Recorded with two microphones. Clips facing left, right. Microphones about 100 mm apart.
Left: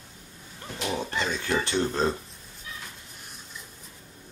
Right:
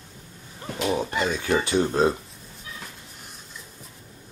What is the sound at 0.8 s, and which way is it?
Speech, 10° right (ahead or behind).